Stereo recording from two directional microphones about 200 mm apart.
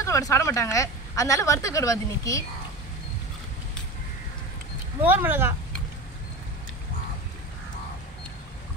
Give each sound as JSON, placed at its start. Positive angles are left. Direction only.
{"t": 0.0, "sound": "a woman's voice", "side_deg": 15}
{"t": 5.0, "sound": "speech", "side_deg": -10}